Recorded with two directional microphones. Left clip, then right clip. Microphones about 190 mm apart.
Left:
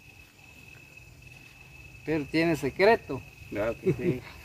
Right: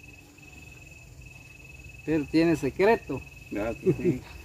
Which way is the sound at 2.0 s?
15° left (ahead or behind).